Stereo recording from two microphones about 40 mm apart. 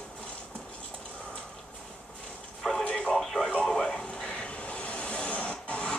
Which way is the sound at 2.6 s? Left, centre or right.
Centre.